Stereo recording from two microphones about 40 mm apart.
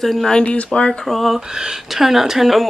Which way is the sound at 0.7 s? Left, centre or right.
Left.